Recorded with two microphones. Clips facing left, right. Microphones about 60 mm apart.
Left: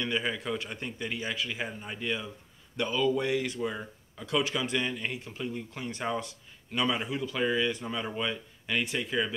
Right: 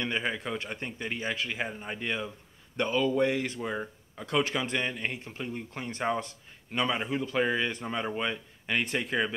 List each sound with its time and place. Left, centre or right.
0.0 s speech: right